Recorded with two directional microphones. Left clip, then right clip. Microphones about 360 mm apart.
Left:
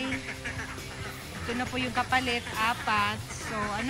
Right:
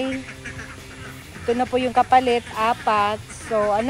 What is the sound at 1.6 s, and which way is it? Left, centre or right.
Speech, centre.